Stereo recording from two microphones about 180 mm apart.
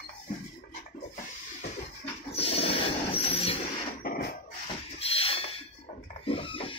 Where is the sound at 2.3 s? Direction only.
30° left (ahead or behind).